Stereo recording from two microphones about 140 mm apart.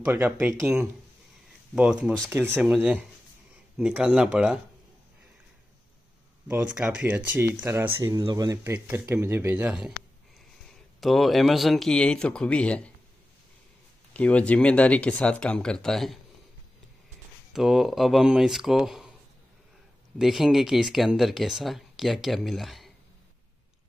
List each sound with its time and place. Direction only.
0.0 s speech: 15° right (ahead or behind)
1.8 s speech: 5° right (ahead or behind)
2.7 s speech: 5° right (ahead or behind)
6.4 s speech: 10° right (ahead or behind); by 8.7 s 25° right (ahead or behind)
8.7 s speech: 15° right (ahead or behind)
11.0 s speech: centre (ahead or behind)
14.1 s speech: 10° left (ahead or behind)
17.5 s speech: 5° right (ahead or behind)
20.2 s speech: 5° right (ahead or behind)